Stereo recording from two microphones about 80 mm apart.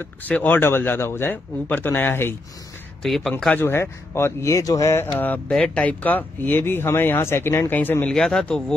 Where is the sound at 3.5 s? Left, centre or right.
Left.